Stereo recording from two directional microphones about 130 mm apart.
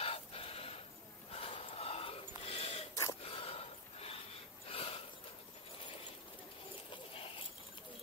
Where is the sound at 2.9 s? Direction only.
25° left (ahead or behind).